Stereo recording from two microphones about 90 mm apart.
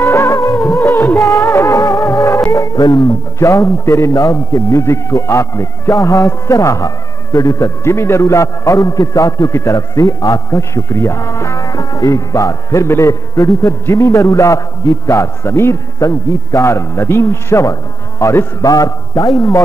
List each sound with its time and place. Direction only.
0.0 s music: 35° left (ahead or behind)
0.7 s music of bollywood: 30° left (ahead or behind)
2.5 s music: 45° left (ahead or behind)
3.3 s a man's voice: 35° left (ahead or behind)
18.7 s a man's voice: 45° left (ahead or behind)